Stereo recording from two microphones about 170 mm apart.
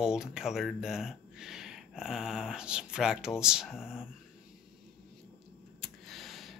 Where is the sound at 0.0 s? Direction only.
5° right (ahead or behind).